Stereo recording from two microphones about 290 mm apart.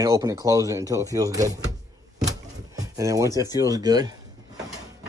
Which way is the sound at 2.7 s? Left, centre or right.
Centre.